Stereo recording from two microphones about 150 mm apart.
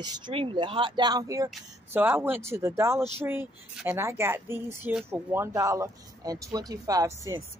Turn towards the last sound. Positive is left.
turn(degrees=-25)  # may be behind; listen again after turning